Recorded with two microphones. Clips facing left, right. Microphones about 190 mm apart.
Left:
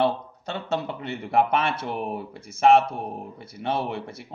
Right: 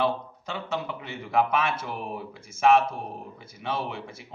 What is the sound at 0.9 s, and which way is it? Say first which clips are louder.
Speech: left 2 dB; 60° left (ahead or behind).